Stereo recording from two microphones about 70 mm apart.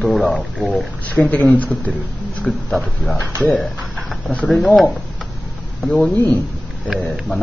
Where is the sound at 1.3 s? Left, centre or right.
Left.